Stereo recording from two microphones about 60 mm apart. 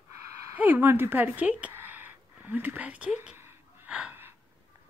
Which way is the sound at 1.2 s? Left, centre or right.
Right.